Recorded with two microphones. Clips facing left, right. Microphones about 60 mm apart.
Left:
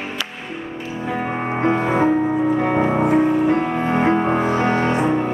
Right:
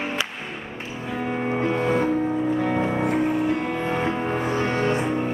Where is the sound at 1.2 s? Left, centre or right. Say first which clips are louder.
Left 2 dB; left.